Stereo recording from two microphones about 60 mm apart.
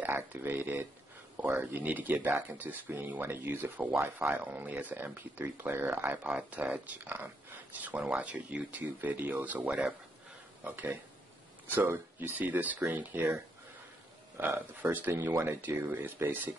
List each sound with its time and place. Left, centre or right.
0.0 s speech: right
4.0 s speech: right
4.4 s speech: right
6.3 s speech: right
11.7 s speech: right
14.8 s speech: right